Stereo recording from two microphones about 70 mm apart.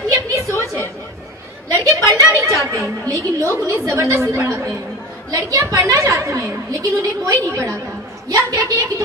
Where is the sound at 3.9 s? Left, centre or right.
Right.